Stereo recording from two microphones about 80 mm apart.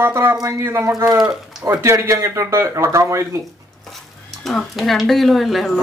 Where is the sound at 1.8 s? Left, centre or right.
Right.